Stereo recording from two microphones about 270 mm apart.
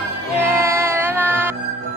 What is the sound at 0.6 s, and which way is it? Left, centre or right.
Music, centre.